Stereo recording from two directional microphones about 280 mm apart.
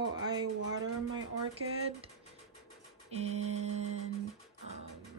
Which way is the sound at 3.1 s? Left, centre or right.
Right.